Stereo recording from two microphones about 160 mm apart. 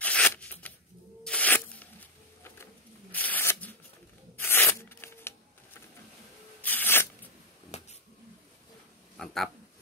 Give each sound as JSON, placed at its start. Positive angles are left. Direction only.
{"t": 0.0, "sound": "a sound", "side_deg": 10}
{"t": 1.2, "sound": "tearing", "side_deg": 10}
{"t": 4.4, "sound": "zipper", "side_deg": 15}
{"t": 6.6, "sound": "zipper", "side_deg": 10}
{"t": 7.7, "sound": "finger snapping", "side_deg": 45}
{"t": 9.1, "sound": "speech", "side_deg": 0}